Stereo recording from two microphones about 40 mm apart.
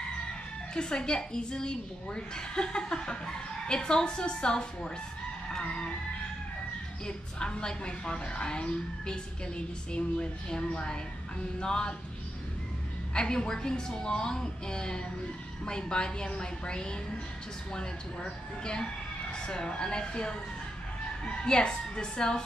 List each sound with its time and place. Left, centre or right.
0.7 s a woman's voice: centre
7.1 s a woman's voice: left
13.1 s a woman's voice: left